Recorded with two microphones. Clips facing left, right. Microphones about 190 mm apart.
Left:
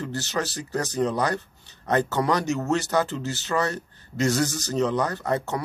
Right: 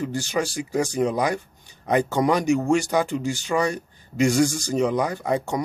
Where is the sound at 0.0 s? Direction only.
15° right (ahead or behind).